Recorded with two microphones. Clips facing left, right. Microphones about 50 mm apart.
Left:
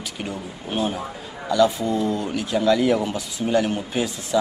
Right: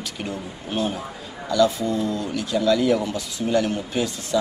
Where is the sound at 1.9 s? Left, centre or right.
Left.